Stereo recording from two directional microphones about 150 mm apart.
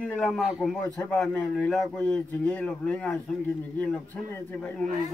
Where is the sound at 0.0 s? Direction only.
5° left (ahead or behind).